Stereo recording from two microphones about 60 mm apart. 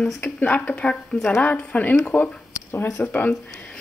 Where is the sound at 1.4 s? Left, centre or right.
Left.